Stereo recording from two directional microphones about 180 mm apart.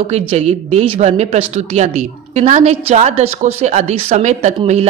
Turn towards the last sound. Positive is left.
turn(degrees=-35)  # may be behind; listen again after turning